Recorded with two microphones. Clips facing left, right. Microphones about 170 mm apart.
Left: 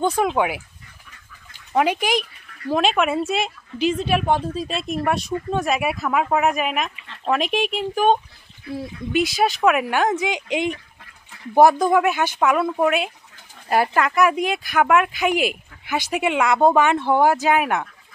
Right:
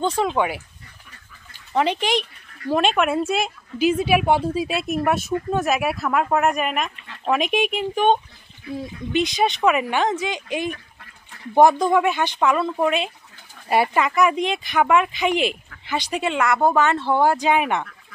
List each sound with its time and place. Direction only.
0.0 s speech: 10° left (ahead or behind)
1.7 s a woman's voice: 10° left (ahead or behind)
11.5 s a woman's voice: 5° left (ahead or behind)